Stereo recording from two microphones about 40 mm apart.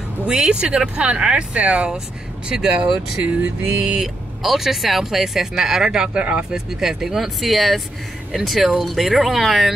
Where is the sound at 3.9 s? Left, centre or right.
Centre.